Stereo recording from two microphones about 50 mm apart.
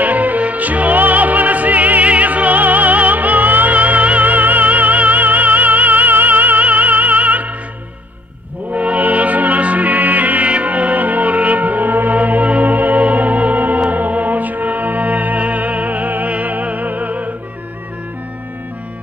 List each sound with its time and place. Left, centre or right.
0.0 s music: right
8.7 s music: right